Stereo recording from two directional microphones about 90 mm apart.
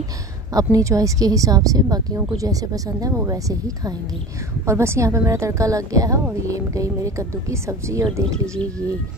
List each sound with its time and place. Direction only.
0.6 s speech: 40° right (ahead or behind)